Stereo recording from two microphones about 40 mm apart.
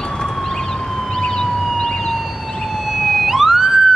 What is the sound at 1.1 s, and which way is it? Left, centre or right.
Police car, centre.